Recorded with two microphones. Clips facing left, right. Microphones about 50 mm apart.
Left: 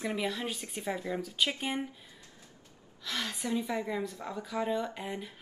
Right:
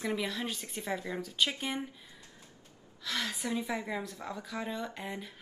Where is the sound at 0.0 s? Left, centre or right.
Centre.